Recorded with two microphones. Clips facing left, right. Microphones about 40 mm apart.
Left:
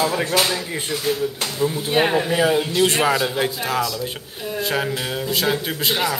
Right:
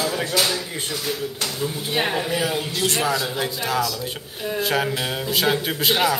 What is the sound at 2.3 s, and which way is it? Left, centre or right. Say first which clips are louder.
Speech: left 6 dB; left.